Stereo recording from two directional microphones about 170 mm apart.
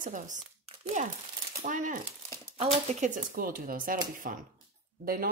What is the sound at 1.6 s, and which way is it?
Speech, 45° right (ahead or behind).